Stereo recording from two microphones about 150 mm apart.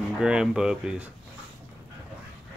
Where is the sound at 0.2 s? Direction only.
5° right (ahead or behind).